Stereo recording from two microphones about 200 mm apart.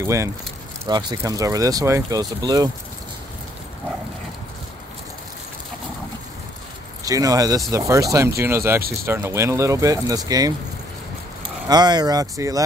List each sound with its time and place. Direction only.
0.0 s speech: 15° right (ahead or behind)
7.1 s speech: 15° right (ahead or behind)
11.7 s speech: 20° right (ahead or behind)